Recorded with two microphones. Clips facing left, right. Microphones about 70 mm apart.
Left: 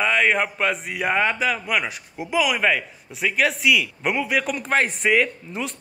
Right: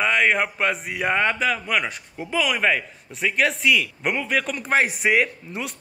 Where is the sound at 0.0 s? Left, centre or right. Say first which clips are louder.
Even; centre.